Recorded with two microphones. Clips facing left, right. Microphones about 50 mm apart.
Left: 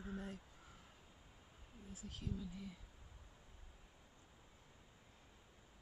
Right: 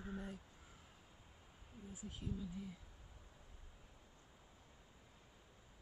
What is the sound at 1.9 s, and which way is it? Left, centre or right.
Speech, centre.